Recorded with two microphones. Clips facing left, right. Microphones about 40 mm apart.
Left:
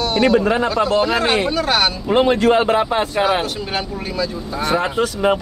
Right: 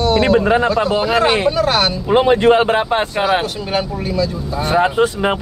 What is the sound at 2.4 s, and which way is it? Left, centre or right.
Speech, right.